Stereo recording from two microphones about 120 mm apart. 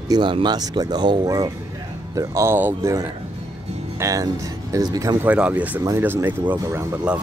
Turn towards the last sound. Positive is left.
turn(degrees=-20)  # may be behind; listen again after turning